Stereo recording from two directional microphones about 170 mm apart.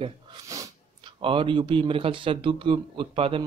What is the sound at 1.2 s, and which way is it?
A man's voice, 30° right (ahead or behind).